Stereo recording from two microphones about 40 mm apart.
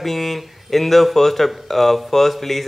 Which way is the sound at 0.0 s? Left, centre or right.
Centre.